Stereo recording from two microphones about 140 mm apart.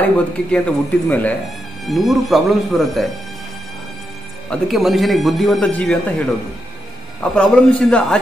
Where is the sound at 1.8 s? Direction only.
Centre (ahead or behind).